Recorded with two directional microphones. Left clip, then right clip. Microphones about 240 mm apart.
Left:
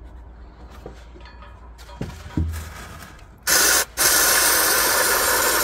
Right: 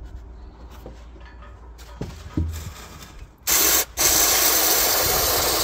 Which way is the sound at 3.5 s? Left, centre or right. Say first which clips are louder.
Left 3 dB; centre.